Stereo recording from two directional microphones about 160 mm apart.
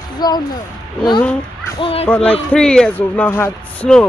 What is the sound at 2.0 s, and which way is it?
A man's voice, 10° left (ahead or behind).